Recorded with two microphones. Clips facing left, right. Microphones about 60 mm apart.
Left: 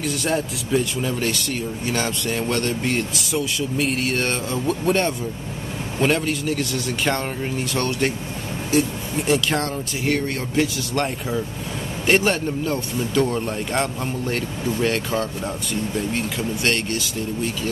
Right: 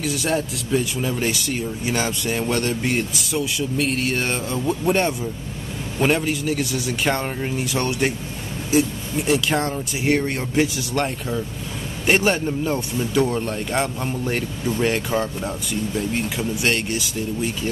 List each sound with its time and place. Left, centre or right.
0.0 s speech: centre
9.7 s speech: centre
14.2 s speech: centre